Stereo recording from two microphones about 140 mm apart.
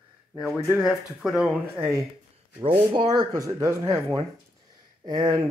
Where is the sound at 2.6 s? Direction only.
35° right (ahead or behind).